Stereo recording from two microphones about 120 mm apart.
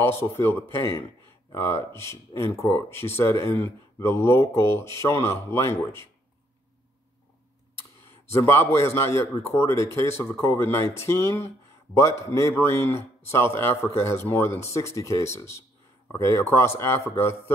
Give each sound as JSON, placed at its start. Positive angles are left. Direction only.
{"t": 0.0, "sound": "speech", "side_deg": 20}
{"t": 8.5, "sound": "speech", "side_deg": 20}